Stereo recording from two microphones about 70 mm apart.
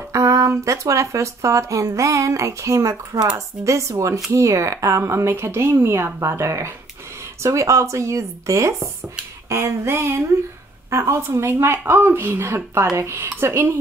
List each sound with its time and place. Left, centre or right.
0.1 s speech: right